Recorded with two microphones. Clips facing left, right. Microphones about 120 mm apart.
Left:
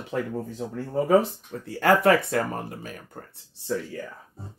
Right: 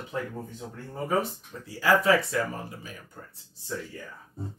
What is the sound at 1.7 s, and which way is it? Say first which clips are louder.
Speech: left 3 dB; 60° left (ahead or behind).